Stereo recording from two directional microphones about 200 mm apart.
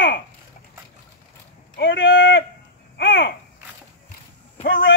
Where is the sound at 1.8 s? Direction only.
65° left (ahead or behind).